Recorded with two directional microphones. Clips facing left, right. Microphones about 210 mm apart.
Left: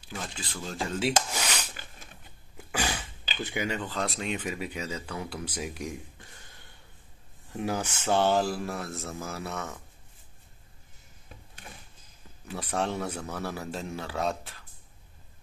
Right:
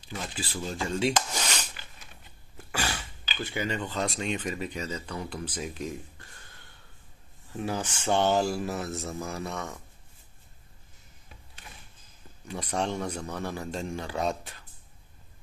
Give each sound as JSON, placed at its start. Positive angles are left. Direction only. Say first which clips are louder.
{"t": 0.0, "sound": "a man's voice", "louder": "right 2 dB", "side_deg": -5}
{"t": 1.3, "sound": "a sound", "louder": "even", "side_deg": 10}
{"t": 3.4, "sound": "speech", "louder": "even", "side_deg": 10}
{"t": 7.5, "sound": "a man's voice", "louder": "left 1 dB", "side_deg": 10}
{"t": 12.7, "sound": "a man's voice", "louder": "even", "side_deg": 5}